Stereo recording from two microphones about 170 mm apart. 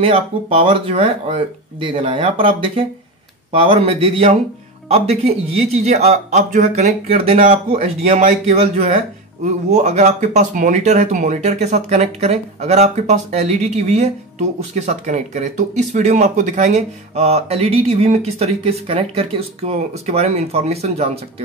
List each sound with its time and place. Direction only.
0.0 s speech: 35° right (ahead or behind)